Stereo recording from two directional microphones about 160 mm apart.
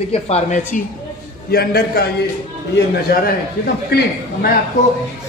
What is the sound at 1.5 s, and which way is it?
Speech, 75° left (ahead or behind).